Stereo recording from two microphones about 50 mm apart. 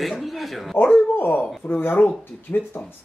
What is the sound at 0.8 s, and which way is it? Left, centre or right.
Speech, left.